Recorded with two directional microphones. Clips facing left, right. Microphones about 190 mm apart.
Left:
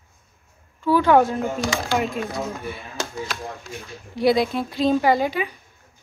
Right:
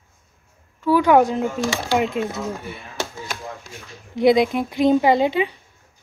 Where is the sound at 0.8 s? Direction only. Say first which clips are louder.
Right 1 dB; 10° right (ahead or behind).